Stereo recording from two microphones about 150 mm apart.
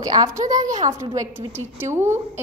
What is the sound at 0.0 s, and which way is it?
A woman's voice, 25° right (ahead or behind).